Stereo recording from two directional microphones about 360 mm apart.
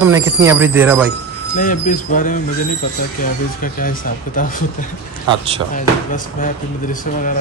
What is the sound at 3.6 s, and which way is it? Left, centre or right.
Speech, left.